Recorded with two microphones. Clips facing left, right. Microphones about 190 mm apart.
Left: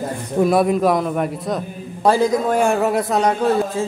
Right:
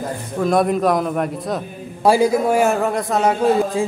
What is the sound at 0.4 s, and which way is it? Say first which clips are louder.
A man's voice: left 1 dB; 5° left (ahead or behind).